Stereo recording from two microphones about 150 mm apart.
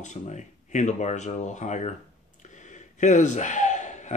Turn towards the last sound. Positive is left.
turn(degrees=50)  # may be behind; listen again after turning